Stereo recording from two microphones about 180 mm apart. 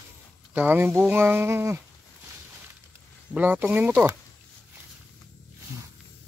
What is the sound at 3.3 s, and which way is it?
Speech, 10° right (ahead or behind).